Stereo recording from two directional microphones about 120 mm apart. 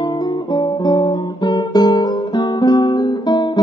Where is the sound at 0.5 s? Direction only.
35° left (ahead or behind).